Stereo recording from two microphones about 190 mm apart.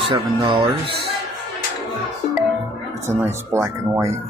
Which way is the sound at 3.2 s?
15° right (ahead or behind).